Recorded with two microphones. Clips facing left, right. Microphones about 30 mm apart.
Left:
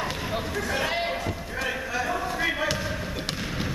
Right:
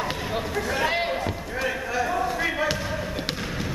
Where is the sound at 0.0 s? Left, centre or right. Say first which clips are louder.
Right 2 dB; centre.